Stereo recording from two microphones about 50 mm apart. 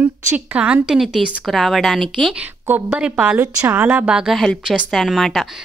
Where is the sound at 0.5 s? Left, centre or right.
Right.